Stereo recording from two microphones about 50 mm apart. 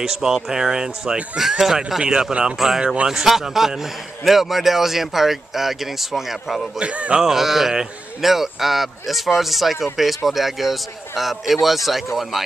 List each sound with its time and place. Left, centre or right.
0.0 s speech: centre
3.1 s a man's voice: centre
6.8 s speech: right
7.2 s a man's voice: centre